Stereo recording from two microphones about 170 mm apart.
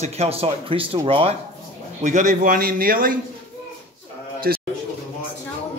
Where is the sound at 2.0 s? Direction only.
45° right (ahead or behind).